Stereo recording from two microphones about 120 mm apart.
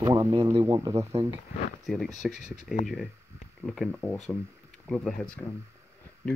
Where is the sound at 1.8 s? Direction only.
Centre (ahead or behind).